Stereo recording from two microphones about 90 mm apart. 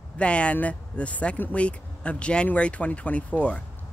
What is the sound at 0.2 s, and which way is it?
Speech, 15° left (ahead or behind).